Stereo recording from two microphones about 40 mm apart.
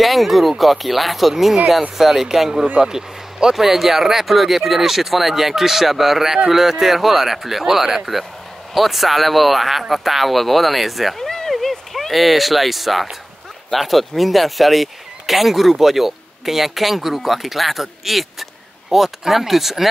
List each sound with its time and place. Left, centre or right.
0.0 s speech: centre
11.1 s a sound: centre
11.5 s speech: centre